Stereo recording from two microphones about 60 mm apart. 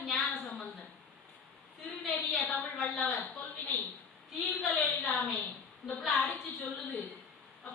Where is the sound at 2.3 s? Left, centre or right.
Centre.